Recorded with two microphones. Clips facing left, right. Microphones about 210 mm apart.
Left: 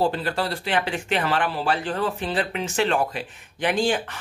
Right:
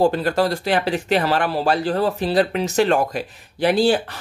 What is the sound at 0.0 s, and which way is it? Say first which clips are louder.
Speech: right 6 dB; 45° right (ahead or behind).